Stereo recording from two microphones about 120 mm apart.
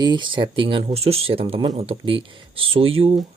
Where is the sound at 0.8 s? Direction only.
60° right (ahead or behind).